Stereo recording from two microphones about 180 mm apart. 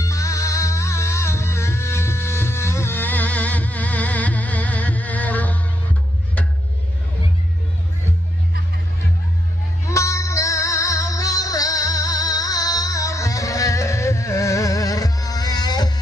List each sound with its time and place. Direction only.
0.0 s music: 15° left (ahead or behind)
9.8 s music: 15° left (ahead or behind)